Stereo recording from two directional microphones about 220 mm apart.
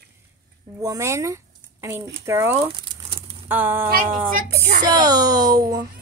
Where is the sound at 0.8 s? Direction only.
15° right (ahead or behind).